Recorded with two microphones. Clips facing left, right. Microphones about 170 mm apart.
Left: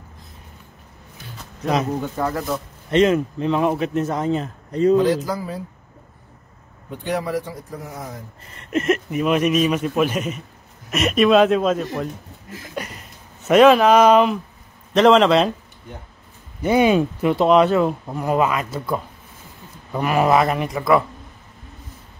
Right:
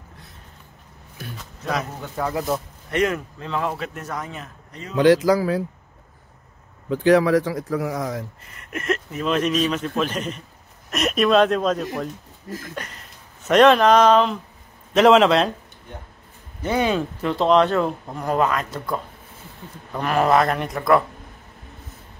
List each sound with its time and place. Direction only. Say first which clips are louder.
2.9 s speech: left 6 dB; 25° left (ahead or behind)
4.9 s speech: right 2 dB; 80° right
6.9 s speech: right 8 dB; 90° right
8.5 s speech: left 6 dB; 25° left (ahead or behind)
15.0 s speech: left 1 dB; centre (ahead or behind)
16.6 s speech: left 5 dB; 15° left (ahead or behind)